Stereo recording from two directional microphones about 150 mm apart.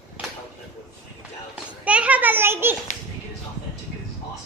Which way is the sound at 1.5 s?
10° right (ahead or behind).